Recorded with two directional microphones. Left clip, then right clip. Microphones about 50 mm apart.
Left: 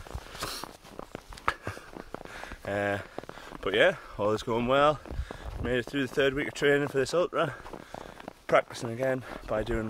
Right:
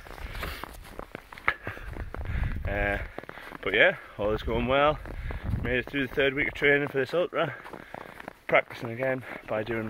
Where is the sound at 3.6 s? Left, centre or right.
Centre.